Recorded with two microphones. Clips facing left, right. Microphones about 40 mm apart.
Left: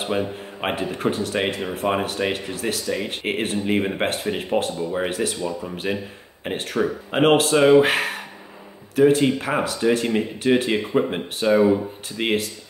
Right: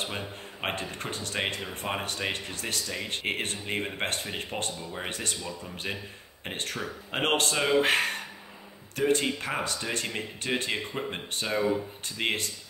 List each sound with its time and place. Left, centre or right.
0.0 s speech: centre